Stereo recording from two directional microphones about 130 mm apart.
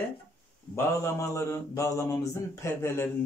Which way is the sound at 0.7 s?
20° left (ahead or behind).